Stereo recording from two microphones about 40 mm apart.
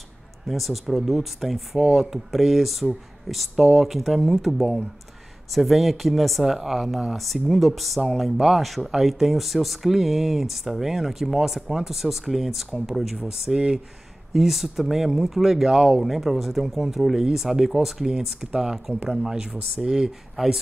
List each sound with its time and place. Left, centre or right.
0.5 s speech: centre
20.4 s speech: centre